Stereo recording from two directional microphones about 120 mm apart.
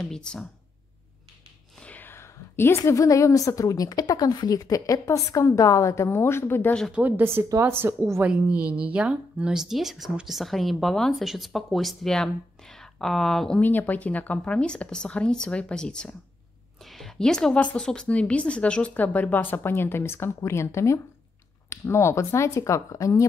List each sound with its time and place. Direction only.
0.0 s a woman's voice: 5° left (ahead or behind)
1.8 s a woman's voice: 15° left (ahead or behind)
6.9 s a woman's voice: 15° right (ahead or behind); by 23.2 s 25° left (ahead or behind)